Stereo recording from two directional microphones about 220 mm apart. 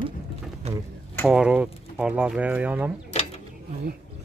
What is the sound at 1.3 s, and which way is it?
Speech, 5° right (ahead or behind).